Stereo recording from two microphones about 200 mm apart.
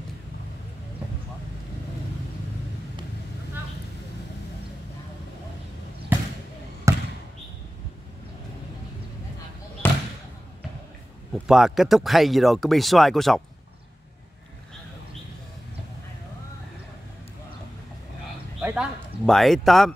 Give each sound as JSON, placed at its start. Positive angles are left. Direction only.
{"t": 6.9, "sound": "basketball bounce", "side_deg": -15}
{"t": 9.8, "sound": "basketball bounce", "side_deg": 10}
{"t": 11.3, "sound": "speech", "side_deg": 0}
{"t": 18.6, "sound": "speech", "side_deg": -5}